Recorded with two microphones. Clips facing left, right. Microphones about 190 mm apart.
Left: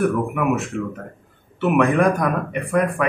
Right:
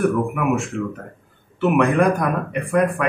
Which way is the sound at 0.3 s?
Centre (ahead or behind).